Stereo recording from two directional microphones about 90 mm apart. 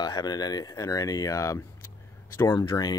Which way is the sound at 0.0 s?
45° left (ahead or behind).